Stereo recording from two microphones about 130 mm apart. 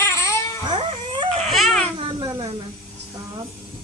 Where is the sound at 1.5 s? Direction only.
Centre (ahead or behind).